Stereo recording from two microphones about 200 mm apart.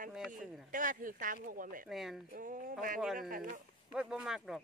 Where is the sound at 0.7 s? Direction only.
40° right (ahead or behind).